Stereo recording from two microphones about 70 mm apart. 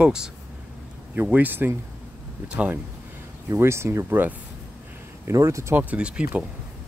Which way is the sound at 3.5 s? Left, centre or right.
Right.